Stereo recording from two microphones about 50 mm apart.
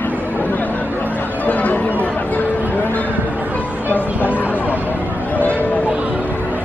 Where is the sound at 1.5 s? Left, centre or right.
Left.